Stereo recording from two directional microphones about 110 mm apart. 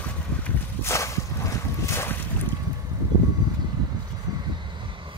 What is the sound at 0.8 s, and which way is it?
Boat, 25° left (ahead or behind).